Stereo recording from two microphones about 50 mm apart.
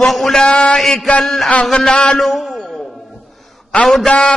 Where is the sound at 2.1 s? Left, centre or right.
Centre.